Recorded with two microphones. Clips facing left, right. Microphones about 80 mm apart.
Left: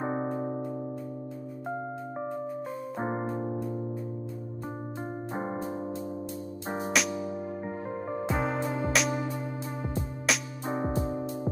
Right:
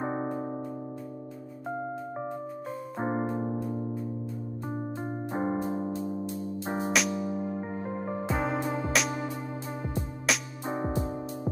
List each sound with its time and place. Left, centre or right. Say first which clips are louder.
5.6 s keyboard: right 3 dB; centre
6.9 s music: even; centre
10.2 s music: even; centre
11.0 s music: left 1 dB; left